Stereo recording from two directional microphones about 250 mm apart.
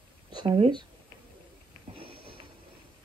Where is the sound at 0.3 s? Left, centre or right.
Centre.